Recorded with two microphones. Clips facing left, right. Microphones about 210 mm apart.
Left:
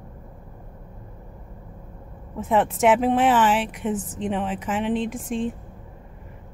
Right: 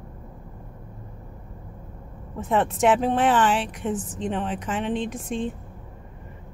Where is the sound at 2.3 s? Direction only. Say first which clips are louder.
Left 2 dB; 5° left (ahead or behind).